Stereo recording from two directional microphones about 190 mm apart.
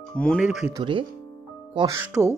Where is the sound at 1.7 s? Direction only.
15° right (ahead or behind).